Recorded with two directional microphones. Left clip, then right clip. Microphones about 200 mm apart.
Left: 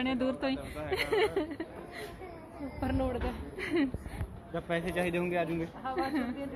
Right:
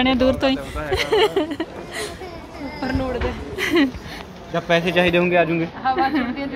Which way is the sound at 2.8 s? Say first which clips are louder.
Right 9 dB; 45° left (ahead or behind).